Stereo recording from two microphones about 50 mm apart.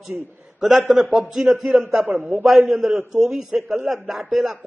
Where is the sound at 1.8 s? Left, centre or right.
Right.